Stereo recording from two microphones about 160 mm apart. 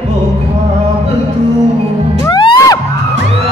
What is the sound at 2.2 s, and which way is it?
Music, 25° left (ahead or behind).